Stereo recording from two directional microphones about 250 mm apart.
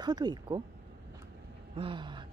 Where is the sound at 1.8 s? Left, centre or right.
Centre.